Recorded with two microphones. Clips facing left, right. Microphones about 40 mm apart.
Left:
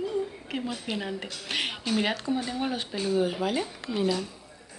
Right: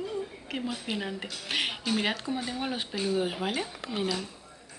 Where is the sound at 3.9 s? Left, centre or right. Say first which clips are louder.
Left 5 dB; centre.